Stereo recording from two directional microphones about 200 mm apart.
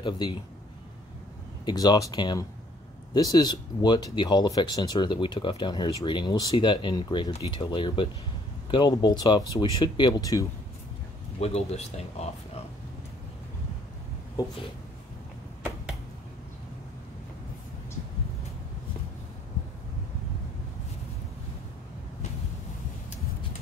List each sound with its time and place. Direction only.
0.0 s speech: 25° left (ahead or behind)
1.7 s speech: 20° left (ahead or behind)
11.3 s speech: 30° left (ahead or behind)